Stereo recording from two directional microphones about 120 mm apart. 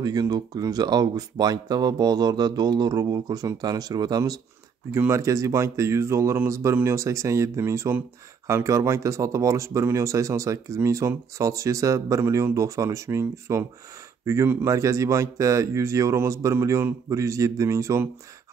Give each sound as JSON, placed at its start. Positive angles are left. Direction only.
{"t": 0.0, "sound": "speech", "side_deg": -35}